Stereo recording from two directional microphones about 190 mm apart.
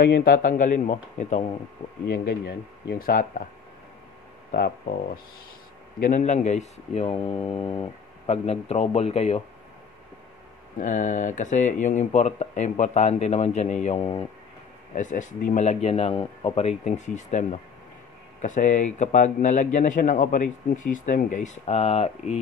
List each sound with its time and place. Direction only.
0.0 s speech: 55° left (ahead or behind)
2.0 s speech: 55° left (ahead or behind)
4.5 s speech: 50° left (ahead or behind); by 9.4 s 30° left (ahead or behind)
10.8 s speech: 45° left (ahead or behind)
15.0 s speech: 40° left (ahead or behind)